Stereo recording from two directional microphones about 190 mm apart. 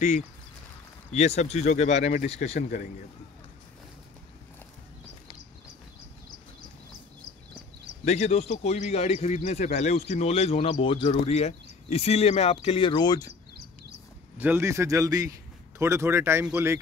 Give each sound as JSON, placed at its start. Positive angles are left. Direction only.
{"t": 1.1, "sound": "speech", "side_deg": 35}
{"t": 8.0, "sound": "speech", "side_deg": 35}
{"t": 14.4, "sound": "speech", "side_deg": -15}